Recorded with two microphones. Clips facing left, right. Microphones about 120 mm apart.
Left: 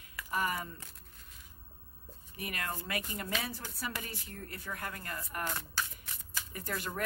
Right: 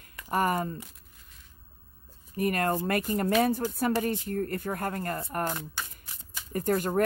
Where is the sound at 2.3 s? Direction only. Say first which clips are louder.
Right 13 dB; 45° right (ahead or behind).